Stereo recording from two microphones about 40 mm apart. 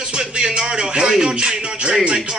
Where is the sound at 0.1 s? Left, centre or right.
Right.